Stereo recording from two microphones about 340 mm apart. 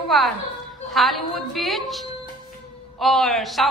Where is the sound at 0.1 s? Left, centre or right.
Centre.